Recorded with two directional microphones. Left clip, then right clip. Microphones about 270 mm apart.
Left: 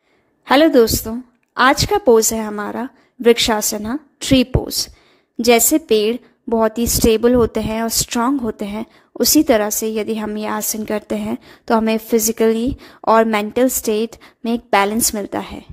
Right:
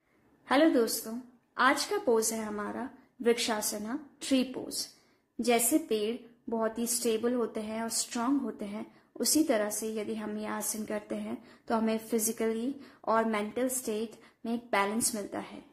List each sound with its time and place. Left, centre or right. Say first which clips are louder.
0.5 s a woman's voice: left 14 dB; left